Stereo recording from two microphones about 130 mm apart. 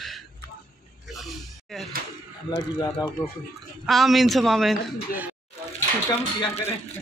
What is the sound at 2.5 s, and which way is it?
Speech, 35° left (ahead or behind).